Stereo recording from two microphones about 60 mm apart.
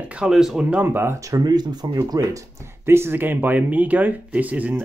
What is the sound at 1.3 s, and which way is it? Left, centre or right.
Speech, right.